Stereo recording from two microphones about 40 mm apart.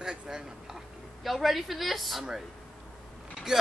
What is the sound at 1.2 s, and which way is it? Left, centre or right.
Speech, centre.